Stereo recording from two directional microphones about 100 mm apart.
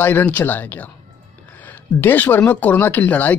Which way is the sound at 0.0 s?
15° left (ahead or behind).